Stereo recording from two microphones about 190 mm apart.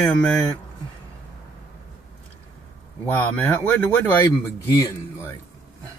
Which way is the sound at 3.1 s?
5° left (ahead or behind).